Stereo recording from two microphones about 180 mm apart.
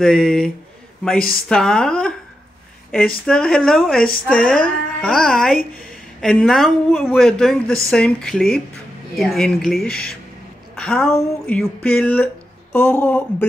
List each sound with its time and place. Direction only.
0.0 s speech: 5° left (ahead or behind)
3.3 s speech: 5° left (ahead or behind)
4.1 s speech: 50° left (ahead or behind)
4.6 s speech: 5° left (ahead or behind)
9.8 s speech: 60° left (ahead or behind)
10.8 s a woman's voice: 5° left (ahead or behind)
11.4 s a sound: 5° left (ahead or behind)